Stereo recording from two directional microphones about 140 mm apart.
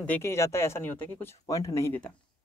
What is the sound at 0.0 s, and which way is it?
Speech, 15° left (ahead or behind).